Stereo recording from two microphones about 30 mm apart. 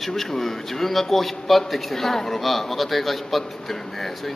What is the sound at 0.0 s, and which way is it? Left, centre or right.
A man's voice, centre.